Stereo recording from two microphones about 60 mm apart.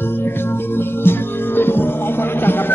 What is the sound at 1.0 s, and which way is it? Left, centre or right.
Music, left.